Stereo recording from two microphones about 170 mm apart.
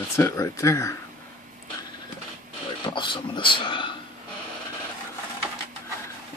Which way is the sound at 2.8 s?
30° left (ahead or behind).